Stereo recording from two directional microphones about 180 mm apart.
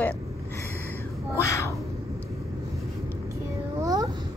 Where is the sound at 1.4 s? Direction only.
15° left (ahead or behind).